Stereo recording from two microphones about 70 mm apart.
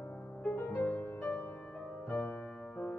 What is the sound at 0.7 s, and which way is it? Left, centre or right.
Music, left.